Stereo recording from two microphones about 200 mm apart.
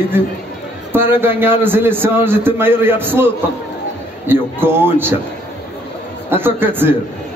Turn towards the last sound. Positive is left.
turn(degrees=-10)  # may be behind; listen again after turning